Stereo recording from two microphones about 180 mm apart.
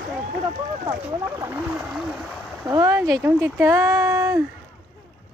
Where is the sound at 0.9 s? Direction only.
15° right (ahead or behind).